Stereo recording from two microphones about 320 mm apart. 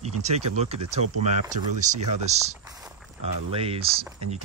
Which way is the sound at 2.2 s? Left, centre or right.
Right.